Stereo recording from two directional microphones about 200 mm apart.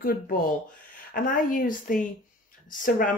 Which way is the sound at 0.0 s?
45° left (ahead or behind).